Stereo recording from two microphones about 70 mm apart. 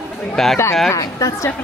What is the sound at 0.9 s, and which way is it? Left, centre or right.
Speech, left.